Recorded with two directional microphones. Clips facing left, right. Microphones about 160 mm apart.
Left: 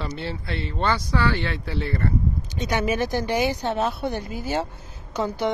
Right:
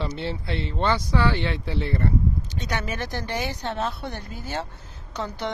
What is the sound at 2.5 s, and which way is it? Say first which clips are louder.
Speech: left 6 dB; 10° left (ahead or behind).